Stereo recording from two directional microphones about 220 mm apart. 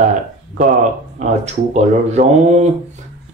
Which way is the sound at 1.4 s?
30° right (ahead or behind).